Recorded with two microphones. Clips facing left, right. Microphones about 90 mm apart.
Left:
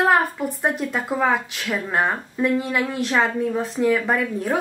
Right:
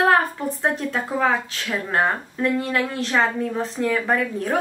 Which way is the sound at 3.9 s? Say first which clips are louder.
Left 1 dB; 5° left (ahead or behind).